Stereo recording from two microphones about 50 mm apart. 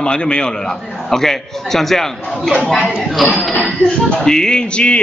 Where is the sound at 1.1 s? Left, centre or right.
Centre.